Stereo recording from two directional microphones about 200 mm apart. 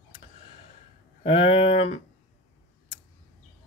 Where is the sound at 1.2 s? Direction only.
30° left (ahead or behind).